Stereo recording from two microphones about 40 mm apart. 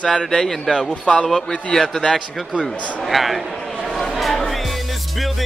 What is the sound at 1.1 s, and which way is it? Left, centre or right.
Speech, left.